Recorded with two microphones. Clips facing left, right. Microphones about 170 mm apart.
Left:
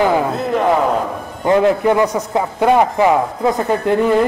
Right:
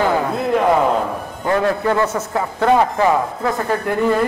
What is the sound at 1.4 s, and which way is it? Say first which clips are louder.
A man's voice: left 5 dB; 20° left (ahead or behind).